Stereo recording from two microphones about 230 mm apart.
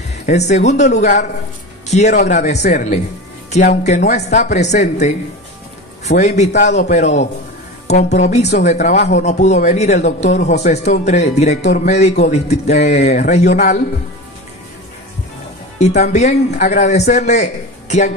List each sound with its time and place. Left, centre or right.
0.3 s speech: left
6.0 s a man's voice: left
15.8 s speech: left